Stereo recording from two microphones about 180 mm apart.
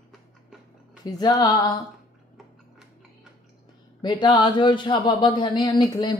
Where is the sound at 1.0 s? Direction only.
25° left (ahead or behind).